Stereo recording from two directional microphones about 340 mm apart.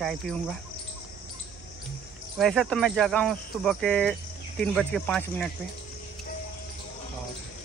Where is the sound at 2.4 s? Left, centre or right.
Centre.